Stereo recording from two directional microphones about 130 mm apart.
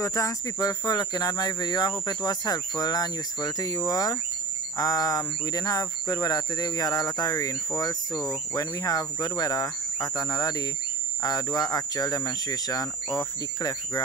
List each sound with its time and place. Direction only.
0.0 s speech: 25° left (ahead or behind)